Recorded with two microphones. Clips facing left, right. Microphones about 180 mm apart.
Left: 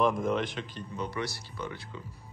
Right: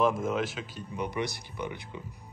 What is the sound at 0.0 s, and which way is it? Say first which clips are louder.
Speech: even; 5° right (ahead or behind).